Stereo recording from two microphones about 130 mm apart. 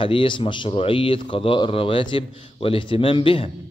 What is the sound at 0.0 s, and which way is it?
A man's voice, 40° left (ahead or behind).